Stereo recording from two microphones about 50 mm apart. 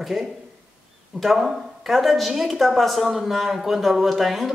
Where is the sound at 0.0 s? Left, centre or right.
Centre.